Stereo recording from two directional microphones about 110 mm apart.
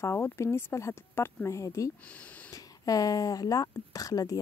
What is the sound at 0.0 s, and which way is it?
Speech, 25° left (ahead or behind).